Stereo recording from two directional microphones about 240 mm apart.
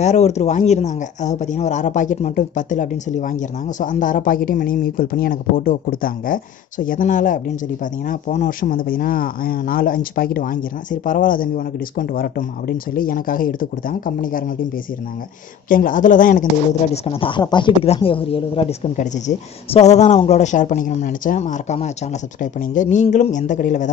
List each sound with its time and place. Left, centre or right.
0.0 s speech: left
15.7 s speech: left